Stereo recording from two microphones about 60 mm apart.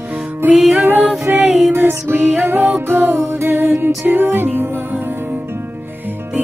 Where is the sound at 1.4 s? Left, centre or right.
Centre.